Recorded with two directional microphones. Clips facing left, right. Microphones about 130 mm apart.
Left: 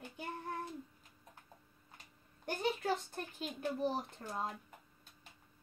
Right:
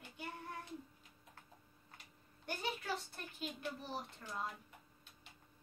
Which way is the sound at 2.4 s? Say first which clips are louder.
Left 6 dB; 45° left (ahead or behind).